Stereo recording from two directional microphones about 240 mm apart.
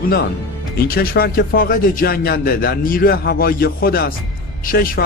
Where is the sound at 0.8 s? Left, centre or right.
Left.